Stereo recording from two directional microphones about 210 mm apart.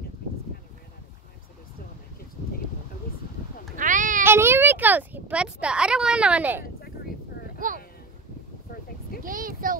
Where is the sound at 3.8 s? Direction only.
40° right (ahead or behind).